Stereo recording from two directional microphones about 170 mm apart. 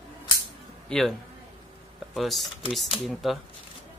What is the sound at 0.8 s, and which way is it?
Speech, 5° left (ahead or behind).